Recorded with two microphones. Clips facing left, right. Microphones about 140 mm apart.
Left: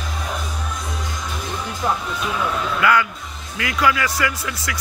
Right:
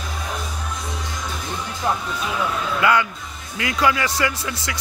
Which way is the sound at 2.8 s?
25° right (ahead or behind).